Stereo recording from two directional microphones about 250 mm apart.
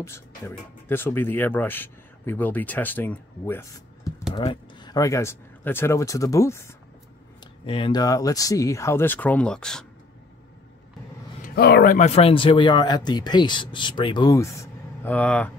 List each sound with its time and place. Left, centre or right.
0.0 s speech: centre
4.3 s speech: left
7.6 s speech: left; by 9.8 s centre
11.4 s speech: left; by 15.5 s centre